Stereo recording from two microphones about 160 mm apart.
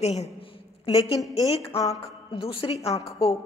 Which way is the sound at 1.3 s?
35° left (ahead or behind).